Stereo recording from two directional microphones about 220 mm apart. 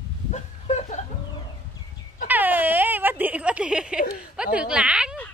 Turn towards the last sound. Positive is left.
turn(degrees=-5)  # may be behind; listen again after turning